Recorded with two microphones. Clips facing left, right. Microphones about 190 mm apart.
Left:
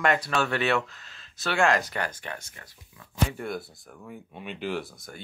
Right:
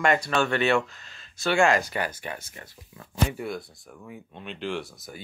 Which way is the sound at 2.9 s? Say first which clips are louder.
Right 5 dB; 40° right (ahead or behind).